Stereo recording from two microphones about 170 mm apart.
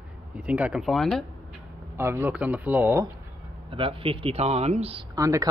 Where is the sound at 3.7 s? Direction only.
30° right (ahead or behind).